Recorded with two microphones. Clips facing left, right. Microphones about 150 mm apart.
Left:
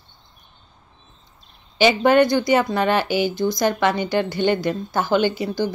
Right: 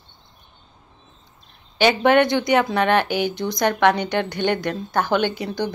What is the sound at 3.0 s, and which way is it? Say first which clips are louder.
Speech: even; 60° right (ahead or behind).